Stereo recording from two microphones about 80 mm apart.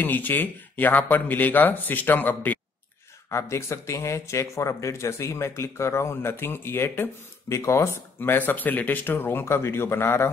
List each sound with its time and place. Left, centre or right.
0.0 s a man's voice: left
3.3 s speech: left